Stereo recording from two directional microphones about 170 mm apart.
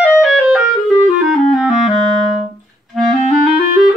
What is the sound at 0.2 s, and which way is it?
Clarinet, 5° right (ahead or behind).